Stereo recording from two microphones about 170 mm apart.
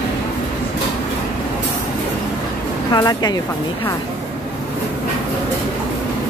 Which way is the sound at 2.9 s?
25° left (ahead or behind).